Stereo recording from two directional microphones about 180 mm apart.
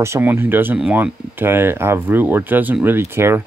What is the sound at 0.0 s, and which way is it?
Speech, 15° right (ahead or behind).